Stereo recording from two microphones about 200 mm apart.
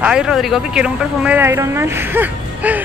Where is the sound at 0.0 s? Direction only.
5° right (ahead or behind).